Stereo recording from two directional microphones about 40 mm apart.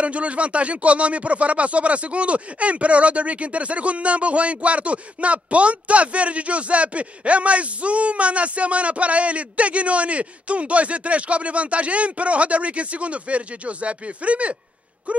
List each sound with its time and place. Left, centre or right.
0.0 s speech: right